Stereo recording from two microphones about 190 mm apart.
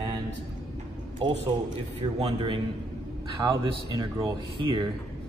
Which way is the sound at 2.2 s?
25° right (ahead or behind).